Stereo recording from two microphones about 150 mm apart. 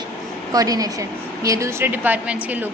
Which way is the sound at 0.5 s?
25° right (ahead or behind).